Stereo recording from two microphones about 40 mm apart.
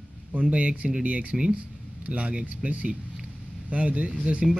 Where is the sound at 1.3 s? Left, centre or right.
Right.